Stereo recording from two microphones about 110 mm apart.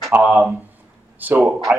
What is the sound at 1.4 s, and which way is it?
Speech, centre (ahead or behind).